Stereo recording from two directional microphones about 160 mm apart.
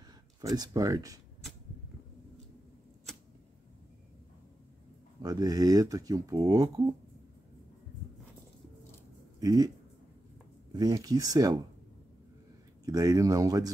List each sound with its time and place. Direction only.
0.4 s speech: 20° right (ahead or behind)
5.2 s speech: 20° right (ahead or behind)
9.4 s speech: 25° right (ahead or behind)
10.7 s speech: 25° right (ahead or behind)
12.8 s speech: 20° right (ahead or behind)